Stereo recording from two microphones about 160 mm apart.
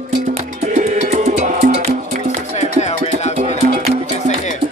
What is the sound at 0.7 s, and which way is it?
Music, 50° right (ahead or behind).